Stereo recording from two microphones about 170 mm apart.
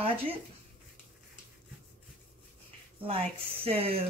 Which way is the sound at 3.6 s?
35° right (ahead or behind).